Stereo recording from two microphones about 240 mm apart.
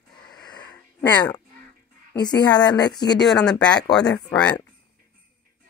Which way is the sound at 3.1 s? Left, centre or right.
Centre.